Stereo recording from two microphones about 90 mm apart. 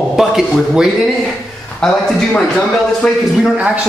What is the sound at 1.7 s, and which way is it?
A man's voice, 10° left (ahead or behind).